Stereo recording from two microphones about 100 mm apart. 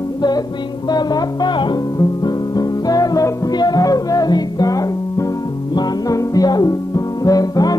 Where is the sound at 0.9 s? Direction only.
45° left (ahead or behind).